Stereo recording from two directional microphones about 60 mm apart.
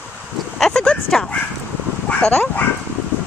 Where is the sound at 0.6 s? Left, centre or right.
Centre.